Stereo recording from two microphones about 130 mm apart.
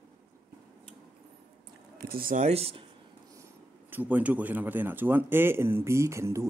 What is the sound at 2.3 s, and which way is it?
Speech, 60° right (ahead or behind).